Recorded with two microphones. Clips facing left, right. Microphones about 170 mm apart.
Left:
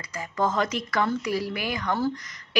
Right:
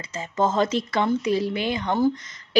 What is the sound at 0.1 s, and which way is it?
A woman's voice, 25° right (ahead or behind).